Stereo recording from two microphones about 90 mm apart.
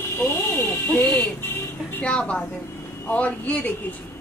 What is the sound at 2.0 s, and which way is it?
A woman's voice, 15° left (ahead or behind).